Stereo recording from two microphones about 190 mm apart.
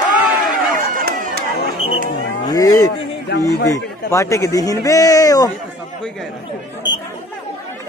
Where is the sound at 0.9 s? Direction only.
50° right (ahead or behind).